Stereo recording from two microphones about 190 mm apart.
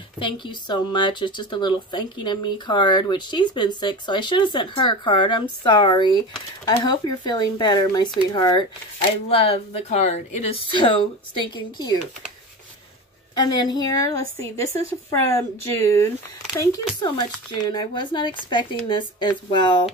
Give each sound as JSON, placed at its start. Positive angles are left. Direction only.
{"t": 0.2, "sound": "speech", "side_deg": 25}
{"t": 13.4, "sound": "a woman's voice", "side_deg": 20}